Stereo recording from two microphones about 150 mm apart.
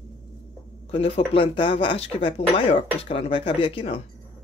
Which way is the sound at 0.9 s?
40° left (ahead or behind).